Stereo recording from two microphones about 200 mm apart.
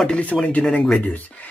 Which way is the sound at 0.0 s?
5° left (ahead or behind).